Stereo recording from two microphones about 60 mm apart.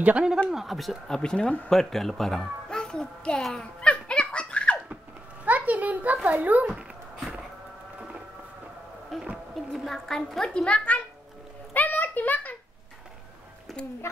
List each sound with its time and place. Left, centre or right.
0.0 s a child's voice: right
0.5 s speech: centre
3.9 s giggle: centre
5.4 s a sound: right
6.2 s a child's voice: right
9.1 s a woman's voice: centre
10.5 s a child's voice: centre
11.7 s a sound: left
13.7 s music: centre
14.0 s a woman's voice: left